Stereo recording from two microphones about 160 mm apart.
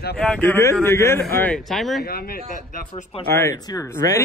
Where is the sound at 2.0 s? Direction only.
70° left (ahead or behind).